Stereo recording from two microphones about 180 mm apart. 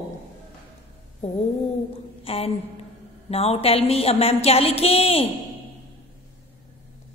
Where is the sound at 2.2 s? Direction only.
35° left (ahead or behind).